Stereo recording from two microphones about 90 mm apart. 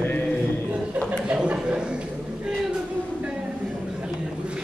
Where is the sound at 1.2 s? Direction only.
10° right (ahead or behind).